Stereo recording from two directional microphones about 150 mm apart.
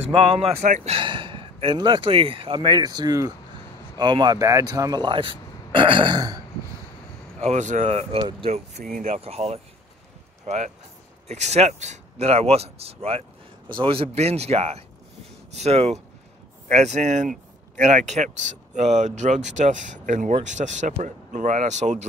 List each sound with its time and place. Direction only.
0.1 s speech: 40° right (ahead or behind)
0.9 s speech: 35° right (ahead or behind)
7.3 s speech: 50° right (ahead or behind)